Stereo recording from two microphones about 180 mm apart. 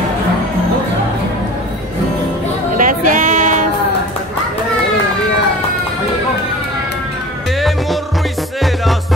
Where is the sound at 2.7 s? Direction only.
45° right (ahead or behind).